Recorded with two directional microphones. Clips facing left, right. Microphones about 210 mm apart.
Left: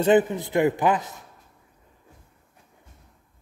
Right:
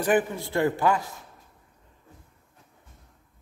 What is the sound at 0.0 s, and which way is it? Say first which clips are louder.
A man's voice: left 5 dB; 20° left (ahead or behind).